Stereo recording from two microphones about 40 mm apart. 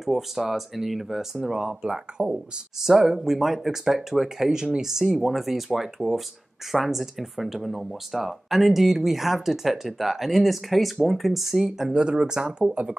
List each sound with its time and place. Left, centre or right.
0.0 s speech: centre
2.2 s speech: centre
11.9 s speech: right